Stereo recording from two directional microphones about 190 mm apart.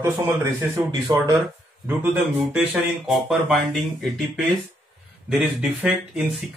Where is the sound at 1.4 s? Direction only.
5° right (ahead or behind).